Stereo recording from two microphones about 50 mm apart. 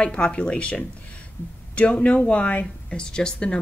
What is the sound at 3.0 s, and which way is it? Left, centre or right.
Speech, centre.